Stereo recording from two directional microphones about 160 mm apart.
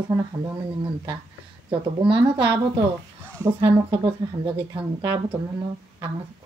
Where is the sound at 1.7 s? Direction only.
30° right (ahead or behind).